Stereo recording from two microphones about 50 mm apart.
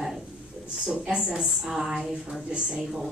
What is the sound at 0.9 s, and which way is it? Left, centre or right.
Speech, right.